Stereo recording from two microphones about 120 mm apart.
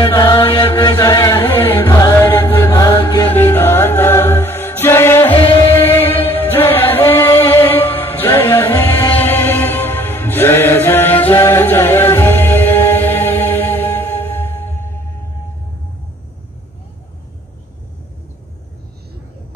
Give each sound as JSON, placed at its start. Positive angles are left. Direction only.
{"t": 0.0, "sound": "chant", "side_deg": 35}
{"t": 0.7, "sound": "music", "side_deg": 35}
{"t": 1.9, "sound": "music", "side_deg": 30}
{"t": 2.6, "sound": "chant", "side_deg": 30}
{"t": 3.0, "sound": "music", "side_deg": 40}
{"t": 3.3, "sound": "music", "side_deg": 15}